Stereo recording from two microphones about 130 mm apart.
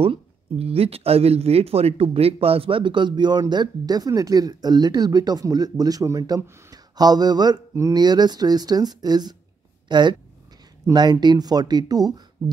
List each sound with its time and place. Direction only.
0.0 s speech: 50° right (ahead or behind); by 12.2 s 30° right (ahead or behind)